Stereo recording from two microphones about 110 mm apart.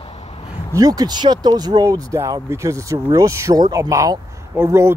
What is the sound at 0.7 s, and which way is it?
Speech, 35° right (ahead or behind).